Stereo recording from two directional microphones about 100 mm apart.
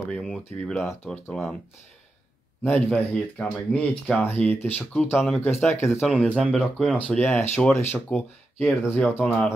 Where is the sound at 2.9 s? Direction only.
10° left (ahead or behind).